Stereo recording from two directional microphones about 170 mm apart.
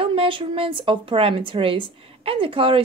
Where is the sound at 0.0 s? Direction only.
30° right (ahead or behind).